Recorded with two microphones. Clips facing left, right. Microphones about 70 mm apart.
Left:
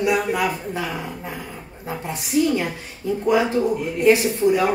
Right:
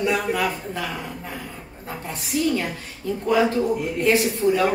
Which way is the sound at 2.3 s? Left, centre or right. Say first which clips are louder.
Left 3 dB; left.